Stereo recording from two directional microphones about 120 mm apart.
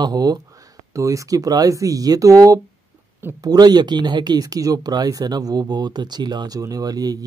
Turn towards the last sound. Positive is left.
turn(degrees=-30)  # may be behind; listen again after turning